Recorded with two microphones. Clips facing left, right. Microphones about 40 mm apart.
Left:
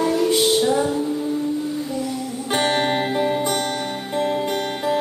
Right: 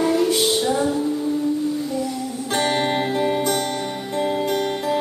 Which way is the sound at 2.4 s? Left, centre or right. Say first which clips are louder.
Left 1 dB; centre.